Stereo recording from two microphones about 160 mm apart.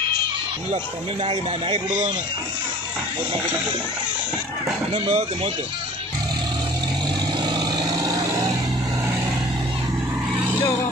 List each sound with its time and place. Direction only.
1.2 s speech: 40° right (ahead or behind)
4.9 s speech: 35° right (ahead or behind)
7.5 s vehicle: 25° right (ahead or behind)